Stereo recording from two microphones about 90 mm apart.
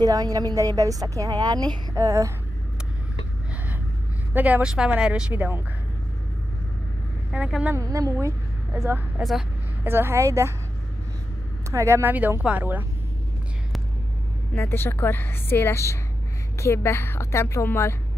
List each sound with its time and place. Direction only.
0.0 s a woman's voice: 45° right (ahead or behind)
4.3 s a woman's voice: 20° right (ahead or behind)
5.3 s speech: 25° right (ahead or behind)
7.3 s a woman's voice: 15° right (ahead or behind)
7.7 s a woman's voice: 40° right (ahead or behind)
8.7 s a woman's voice: 25° right (ahead or behind)
11.7 s speech: 30° right (ahead or behind)
14.5 s a woman's voice: 25° left (ahead or behind)